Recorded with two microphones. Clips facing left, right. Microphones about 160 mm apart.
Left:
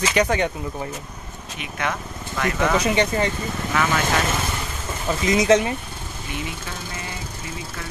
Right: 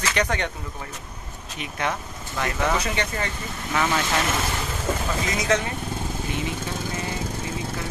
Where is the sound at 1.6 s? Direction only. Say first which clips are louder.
Even; 30° right (ahead or behind).